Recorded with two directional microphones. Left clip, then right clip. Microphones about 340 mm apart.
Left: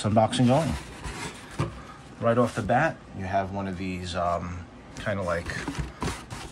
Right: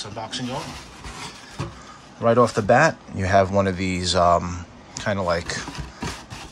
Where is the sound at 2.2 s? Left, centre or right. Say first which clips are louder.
Right 6 dB; centre.